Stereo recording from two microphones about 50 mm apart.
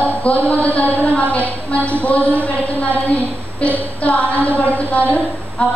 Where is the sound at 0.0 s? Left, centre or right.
Left.